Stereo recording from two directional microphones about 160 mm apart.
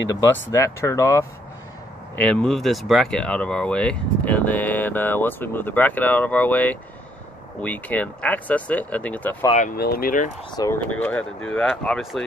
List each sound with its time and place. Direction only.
0.1 s speech: 20° left (ahead or behind)
2.1 s speech: 5° left (ahead or behind)
9.8 s speech: 70° left (ahead or behind)
10.5 s speech: 25° left (ahead or behind)
11.0 s speech: 10° left (ahead or behind)